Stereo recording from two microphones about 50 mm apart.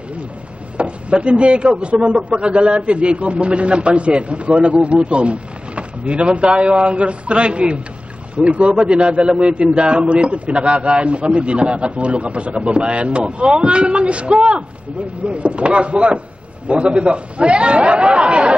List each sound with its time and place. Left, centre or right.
0.7 s speech: right